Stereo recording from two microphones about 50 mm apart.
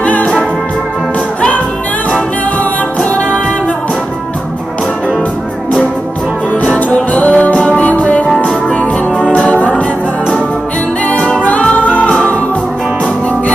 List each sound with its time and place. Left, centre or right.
0.0 s music: left
6.5 s music: left
11.1 s music: left